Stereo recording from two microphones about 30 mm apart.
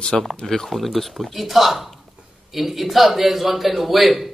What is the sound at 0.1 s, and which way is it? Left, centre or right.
Speech, centre.